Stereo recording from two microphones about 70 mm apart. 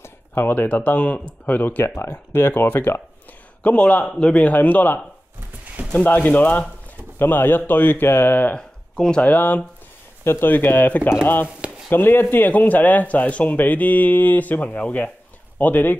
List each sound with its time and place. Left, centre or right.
0.0 s a man's voice: left
3.6 s a man's voice: centre
6.0 s a man's voice: left
8.5 s a sound: centre
9.2 s a man's voice: left
10.2 s a man's voice: left